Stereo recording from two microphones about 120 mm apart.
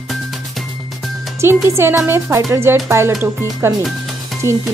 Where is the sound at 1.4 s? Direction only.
20° right (ahead or behind).